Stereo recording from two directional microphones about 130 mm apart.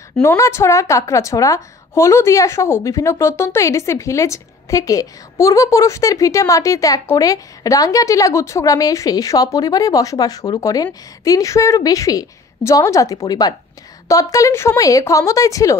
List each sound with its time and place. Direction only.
0.2 s a woman's voice: 20° left (ahead or behind)